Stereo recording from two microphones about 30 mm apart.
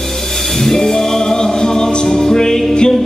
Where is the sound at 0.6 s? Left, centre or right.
Centre.